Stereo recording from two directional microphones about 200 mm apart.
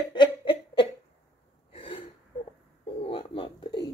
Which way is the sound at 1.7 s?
25° left (ahead or behind).